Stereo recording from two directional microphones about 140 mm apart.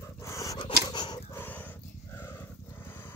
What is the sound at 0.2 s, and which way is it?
Dog, 25° left (ahead or behind).